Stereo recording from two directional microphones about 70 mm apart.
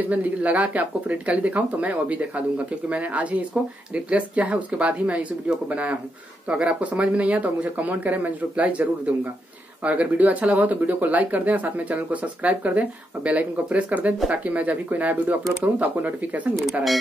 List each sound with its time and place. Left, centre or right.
0.1 s speech: right
9.8 s speech: right